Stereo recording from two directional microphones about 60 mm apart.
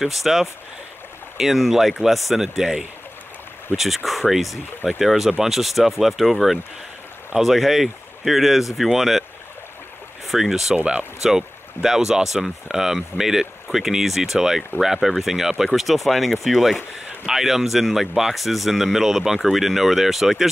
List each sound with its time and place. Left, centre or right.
0.0 s speech: centre
10.2 s speech: centre
10.8 s speech: centre
11.2 s speech: centre